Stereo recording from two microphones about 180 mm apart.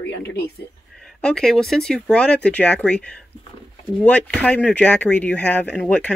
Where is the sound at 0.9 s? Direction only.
5° left (ahead or behind).